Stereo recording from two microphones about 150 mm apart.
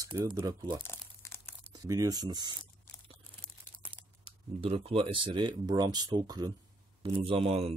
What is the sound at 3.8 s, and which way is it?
Speech, 35° right (ahead or behind).